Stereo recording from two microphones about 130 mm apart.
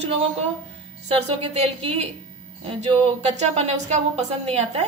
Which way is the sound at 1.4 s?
55° right (ahead or behind).